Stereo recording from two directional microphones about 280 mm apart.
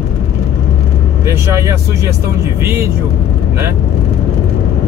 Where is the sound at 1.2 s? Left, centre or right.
Centre.